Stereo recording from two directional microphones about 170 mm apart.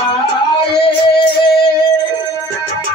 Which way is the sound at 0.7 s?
70° left (ahead or behind).